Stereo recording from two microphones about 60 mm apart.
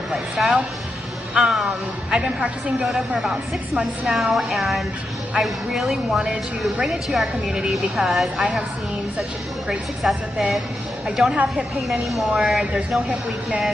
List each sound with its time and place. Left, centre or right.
0.4 s a woman's voice: centre
9.7 s a woman's voice: centre